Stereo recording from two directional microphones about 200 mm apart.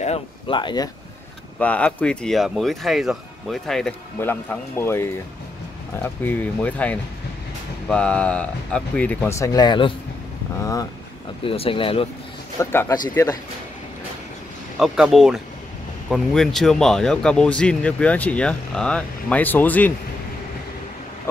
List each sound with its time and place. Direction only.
0.0 s speech: 30° left (ahead or behind)
1.6 s speech: 5° left (ahead or behind)
11.4 s speech: 25° left (ahead or behind)
12.5 s speech: 15° left (ahead or behind)
14.8 s speech: centre (ahead or behind)